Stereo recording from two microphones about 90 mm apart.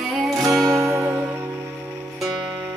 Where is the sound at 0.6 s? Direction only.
35° right (ahead or behind).